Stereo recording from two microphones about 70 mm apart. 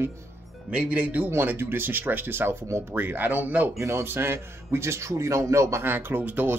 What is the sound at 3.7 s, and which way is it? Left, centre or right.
A man's voice, right.